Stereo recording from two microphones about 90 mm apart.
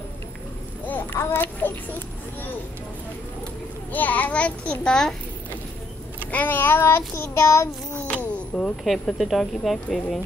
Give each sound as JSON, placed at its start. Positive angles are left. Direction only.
{"t": 0.8, "sound": "a child's voice", "side_deg": 20}
{"t": 3.9, "sound": "a child's voice", "side_deg": 20}
{"t": 6.3, "sound": "child singing", "side_deg": 20}
{"t": 7.9, "sound": "a sound", "side_deg": 20}
{"t": 8.8, "sound": "speech", "side_deg": 0}